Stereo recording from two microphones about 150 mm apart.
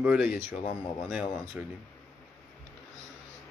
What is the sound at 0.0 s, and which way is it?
Speech, 10° right (ahead or behind).